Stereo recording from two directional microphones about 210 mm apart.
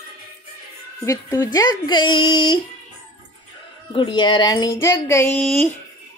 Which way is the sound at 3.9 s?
25° left (ahead or behind).